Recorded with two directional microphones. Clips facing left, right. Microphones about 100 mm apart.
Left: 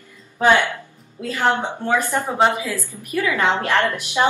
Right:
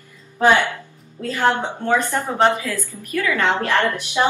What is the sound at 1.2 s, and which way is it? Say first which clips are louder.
A woman's voice: right 1 dB; 10° left (ahead or behind).